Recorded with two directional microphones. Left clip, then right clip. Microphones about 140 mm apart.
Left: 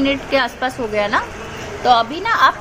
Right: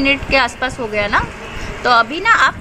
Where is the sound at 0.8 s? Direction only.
Centre (ahead or behind).